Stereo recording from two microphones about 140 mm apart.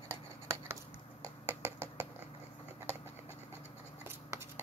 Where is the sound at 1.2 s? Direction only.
15° right (ahead or behind).